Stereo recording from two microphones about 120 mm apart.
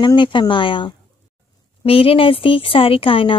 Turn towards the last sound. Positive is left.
turn(degrees=50)  # may be behind; listen again after turning